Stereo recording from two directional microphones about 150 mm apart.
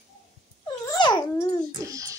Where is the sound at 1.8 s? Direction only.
20° right (ahead or behind).